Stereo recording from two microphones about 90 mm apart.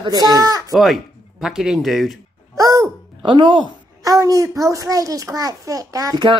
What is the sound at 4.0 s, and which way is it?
A child's voice, 40° right (ahead or behind).